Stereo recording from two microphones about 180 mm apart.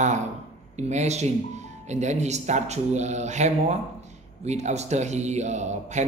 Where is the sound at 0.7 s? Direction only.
40° right (ahead or behind).